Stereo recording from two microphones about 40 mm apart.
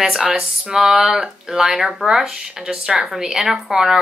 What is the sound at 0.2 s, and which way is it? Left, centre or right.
Speech, centre.